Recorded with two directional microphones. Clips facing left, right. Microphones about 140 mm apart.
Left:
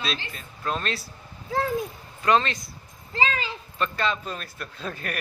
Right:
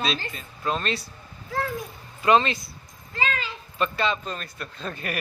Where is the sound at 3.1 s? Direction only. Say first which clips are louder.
Left 2 dB; 30° left (ahead or behind).